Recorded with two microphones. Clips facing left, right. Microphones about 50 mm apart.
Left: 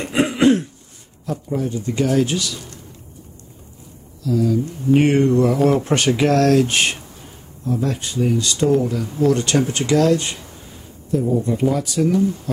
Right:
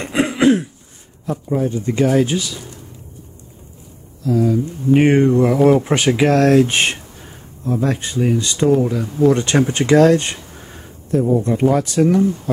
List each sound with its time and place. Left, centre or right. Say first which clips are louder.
0.0 s throat clearing: right 1 dB; centre
1.2 s speech: right 4 dB; right
2.0 s speech: right 2 dB; centre
4.2 s speech: right 2 dB; right
4.9 s speech: right 2 dB; centre; by 12.3 s right